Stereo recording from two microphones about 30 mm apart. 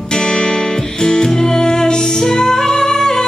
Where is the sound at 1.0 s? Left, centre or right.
Left.